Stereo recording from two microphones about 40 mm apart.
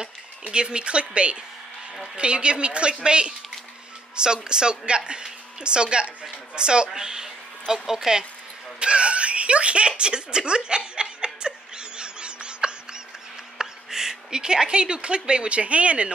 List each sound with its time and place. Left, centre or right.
0.5 s a woman's voice: right
8.7 s a sound: right
13.6 s speech: centre; by 16.1 s right